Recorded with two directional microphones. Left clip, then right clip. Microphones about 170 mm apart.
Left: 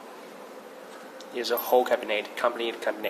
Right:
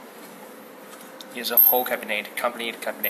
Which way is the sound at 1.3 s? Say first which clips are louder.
Left 2 dB; 50° left (ahead or behind).